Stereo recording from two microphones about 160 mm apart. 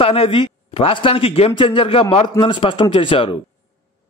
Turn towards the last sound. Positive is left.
turn(degrees=35)  # may be behind; listen again after turning